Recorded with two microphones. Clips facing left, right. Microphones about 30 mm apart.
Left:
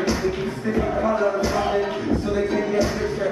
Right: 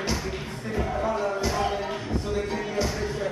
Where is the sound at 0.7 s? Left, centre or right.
Centre.